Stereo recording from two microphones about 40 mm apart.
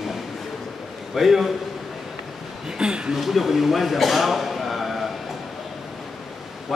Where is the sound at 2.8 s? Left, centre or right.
Right.